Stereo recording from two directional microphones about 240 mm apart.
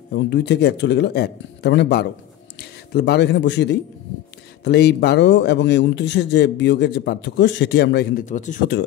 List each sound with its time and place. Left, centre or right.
0.1 s a man's voice: left
8.4 s speech: left